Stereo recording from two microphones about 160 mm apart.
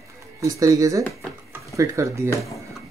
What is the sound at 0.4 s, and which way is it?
Speech, 20° right (ahead or behind).